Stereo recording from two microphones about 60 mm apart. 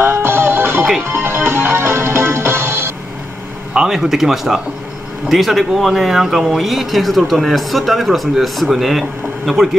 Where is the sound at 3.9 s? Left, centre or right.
Centre.